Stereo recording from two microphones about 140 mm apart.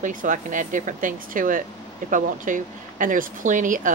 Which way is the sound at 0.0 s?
65° right (ahead or behind).